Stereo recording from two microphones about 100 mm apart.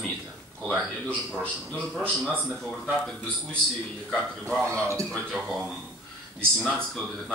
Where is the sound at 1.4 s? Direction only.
10° left (ahead or behind).